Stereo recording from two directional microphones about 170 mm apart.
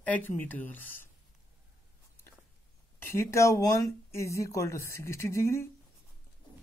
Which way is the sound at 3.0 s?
15° left (ahead or behind).